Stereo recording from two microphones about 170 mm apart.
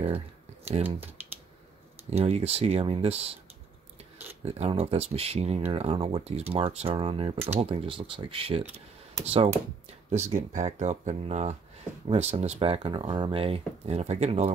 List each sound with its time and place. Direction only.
0.8 s speech: 10° right (ahead or behind)
2.0 s speech: 35° right (ahead or behind)